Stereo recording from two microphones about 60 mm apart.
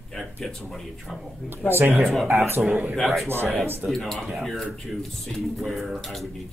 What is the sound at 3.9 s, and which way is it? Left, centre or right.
Speech, centre.